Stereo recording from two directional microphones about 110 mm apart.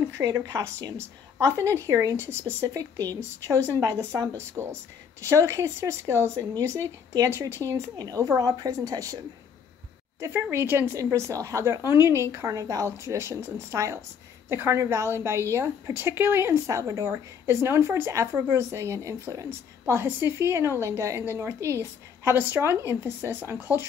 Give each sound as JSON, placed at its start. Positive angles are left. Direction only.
{"t": 0.2, "sound": "a woman's voice", "side_deg": -35}
{"t": 10.2, "sound": "a woman's voice", "side_deg": -20}